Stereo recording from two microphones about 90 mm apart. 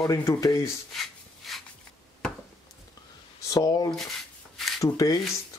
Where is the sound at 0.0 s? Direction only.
35° left (ahead or behind).